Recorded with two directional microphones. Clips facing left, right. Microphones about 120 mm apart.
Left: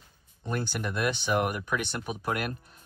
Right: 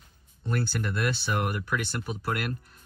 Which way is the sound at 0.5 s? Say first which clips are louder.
Right 1 dB; 15° left (ahead or behind).